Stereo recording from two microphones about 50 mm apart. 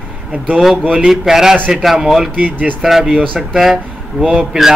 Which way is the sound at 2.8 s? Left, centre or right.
Centre.